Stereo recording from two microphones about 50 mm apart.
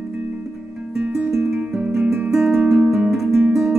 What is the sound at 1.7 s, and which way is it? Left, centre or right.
Music, centre.